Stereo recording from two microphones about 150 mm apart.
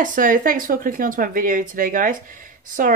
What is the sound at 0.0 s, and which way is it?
Speech, 65° right (ahead or behind).